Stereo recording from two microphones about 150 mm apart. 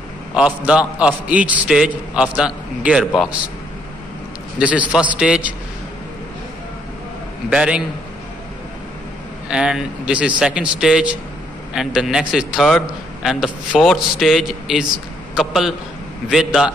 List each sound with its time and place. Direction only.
0.4 s a man's voice: 10° right (ahead or behind)
4.6 s a man's voice: 10° right (ahead or behind)
7.4 s a man's voice: 5° right (ahead or behind)
9.5 s a man's voice: 5° right (ahead or behind)